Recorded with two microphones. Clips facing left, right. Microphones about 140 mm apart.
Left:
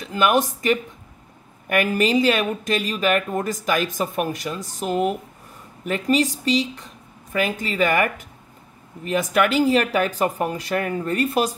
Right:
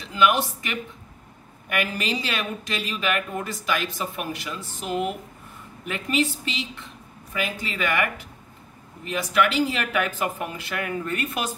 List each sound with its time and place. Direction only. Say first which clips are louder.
0.0 s speech: left 2 dB; 45° left (ahead or behind)